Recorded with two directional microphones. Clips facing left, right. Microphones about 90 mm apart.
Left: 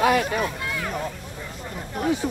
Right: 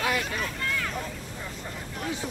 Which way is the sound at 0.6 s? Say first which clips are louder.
Left 1 dB; 15° left (ahead or behind).